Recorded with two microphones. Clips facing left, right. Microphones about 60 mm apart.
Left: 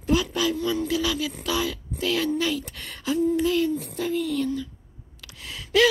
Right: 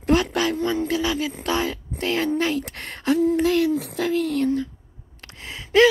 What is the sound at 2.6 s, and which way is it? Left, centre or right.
Speech, right.